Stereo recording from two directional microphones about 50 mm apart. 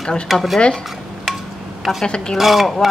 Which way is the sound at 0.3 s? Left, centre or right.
Centre.